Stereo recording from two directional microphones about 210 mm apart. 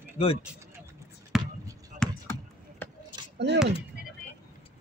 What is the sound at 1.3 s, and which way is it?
Basketball bounce, centre (ahead or behind).